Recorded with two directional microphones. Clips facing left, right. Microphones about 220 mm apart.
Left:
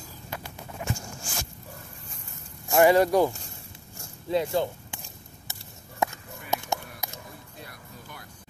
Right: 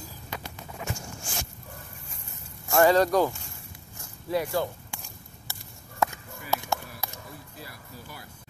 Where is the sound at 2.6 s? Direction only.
15° left (ahead or behind).